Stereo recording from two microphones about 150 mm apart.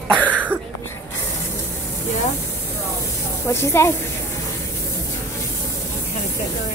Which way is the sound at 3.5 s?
15° left (ahead or behind).